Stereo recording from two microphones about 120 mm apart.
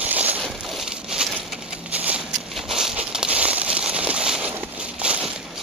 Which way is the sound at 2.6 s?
5° right (ahead or behind).